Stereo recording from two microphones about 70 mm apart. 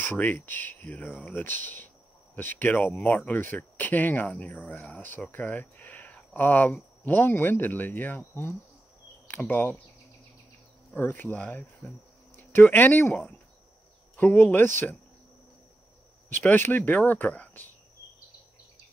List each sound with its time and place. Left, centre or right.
0.0 s speech: left
11.1 s speech: left
11.3 s speech: centre
16.3 s speech: left